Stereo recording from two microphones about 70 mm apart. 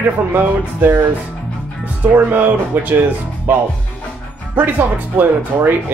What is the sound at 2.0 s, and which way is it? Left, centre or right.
Speech, right.